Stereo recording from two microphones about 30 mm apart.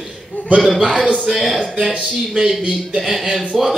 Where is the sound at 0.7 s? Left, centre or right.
Right.